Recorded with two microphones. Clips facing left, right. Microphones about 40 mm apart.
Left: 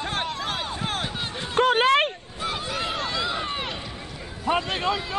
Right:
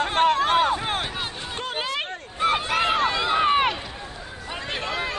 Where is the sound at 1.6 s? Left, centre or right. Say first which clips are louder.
Left 11 dB; left.